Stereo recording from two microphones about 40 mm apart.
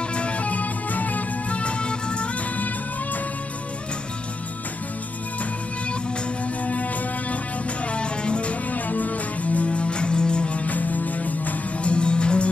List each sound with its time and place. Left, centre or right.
0.1 s music: left
1.6 s music: left
2.5 s music: left
6.6 s music: left
7.9 s music: left
11.9 s music: left